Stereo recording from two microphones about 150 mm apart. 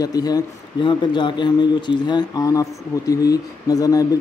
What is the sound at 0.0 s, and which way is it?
A man's voice, 25° left (ahead or behind).